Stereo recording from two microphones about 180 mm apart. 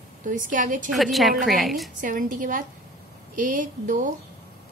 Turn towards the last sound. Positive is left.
turn(degrees=-45)  # may be behind; listen again after turning